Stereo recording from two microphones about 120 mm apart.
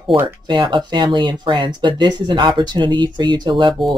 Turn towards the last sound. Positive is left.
turn(degrees=-40)  # may be behind; listen again after turning